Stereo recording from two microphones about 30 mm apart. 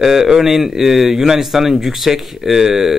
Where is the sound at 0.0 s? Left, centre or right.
Centre.